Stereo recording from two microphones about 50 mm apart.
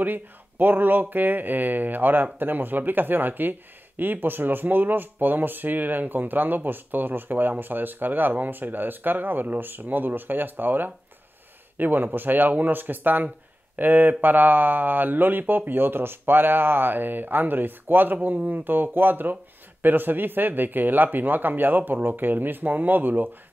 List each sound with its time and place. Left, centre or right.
0.0 s speech: right